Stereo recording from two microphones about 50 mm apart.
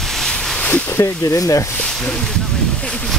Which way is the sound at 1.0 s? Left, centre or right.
Left.